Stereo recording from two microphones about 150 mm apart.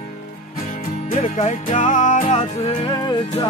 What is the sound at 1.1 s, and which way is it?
Music, 50° left (ahead or behind).